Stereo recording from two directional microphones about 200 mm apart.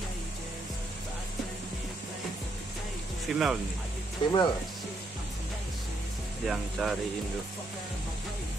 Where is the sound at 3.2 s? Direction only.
Centre (ahead or behind).